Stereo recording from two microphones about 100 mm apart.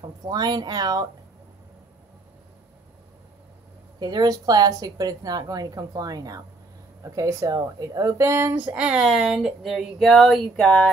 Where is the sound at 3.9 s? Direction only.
45° right (ahead or behind); by 10.6 s centre (ahead or behind).